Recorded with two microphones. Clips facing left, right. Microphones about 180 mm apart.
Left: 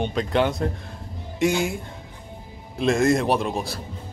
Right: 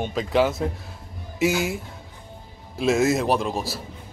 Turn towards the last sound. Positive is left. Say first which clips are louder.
# even
turn(degrees=0)  # may be behind; listen again after turning